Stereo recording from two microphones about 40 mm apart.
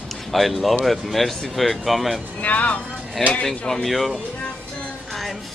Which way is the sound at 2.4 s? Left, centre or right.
Left.